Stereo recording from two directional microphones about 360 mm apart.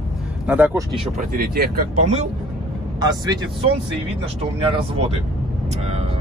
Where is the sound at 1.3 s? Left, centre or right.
Right.